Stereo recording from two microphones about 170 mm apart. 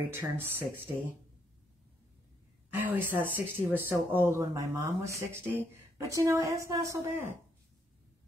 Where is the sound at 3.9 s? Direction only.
15° right (ahead or behind).